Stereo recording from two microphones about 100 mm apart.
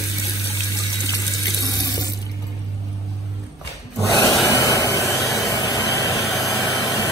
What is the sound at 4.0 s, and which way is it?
Wood, 35° left (ahead or behind).